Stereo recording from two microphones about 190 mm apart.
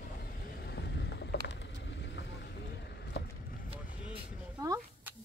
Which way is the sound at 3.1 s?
75° left (ahead or behind).